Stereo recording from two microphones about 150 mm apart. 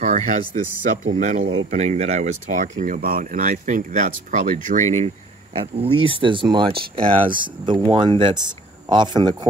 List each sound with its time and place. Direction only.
0.0 s speech: 50° right (ahead or behind)
1.7 s speech: 50° right (ahead or behind)
5.6 s speech: 35° right (ahead or behind)